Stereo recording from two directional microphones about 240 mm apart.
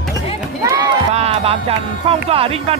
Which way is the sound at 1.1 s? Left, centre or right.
Right.